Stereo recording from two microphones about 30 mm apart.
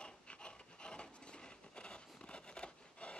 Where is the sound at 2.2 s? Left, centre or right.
Left.